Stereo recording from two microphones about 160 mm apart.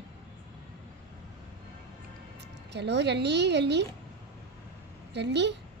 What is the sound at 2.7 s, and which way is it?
A woman's voice, 90° right.